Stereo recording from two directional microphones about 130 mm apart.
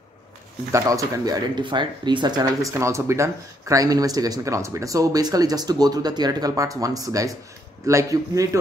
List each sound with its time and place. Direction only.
0.7 s speech: 25° right (ahead or behind)
2.7 s speech: 20° right (ahead or behind)